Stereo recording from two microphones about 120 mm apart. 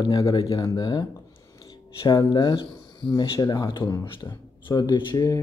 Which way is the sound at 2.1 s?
35° left (ahead or behind).